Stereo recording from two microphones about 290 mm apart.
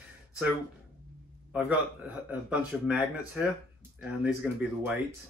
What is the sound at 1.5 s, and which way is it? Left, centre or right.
Speech, centre.